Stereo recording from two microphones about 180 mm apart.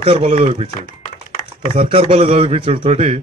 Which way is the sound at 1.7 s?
35° right (ahead or behind).